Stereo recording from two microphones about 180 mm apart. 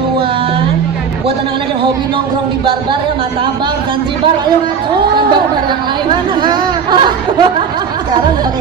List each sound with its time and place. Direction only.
6.4 s laughter: 25° right (ahead or behind)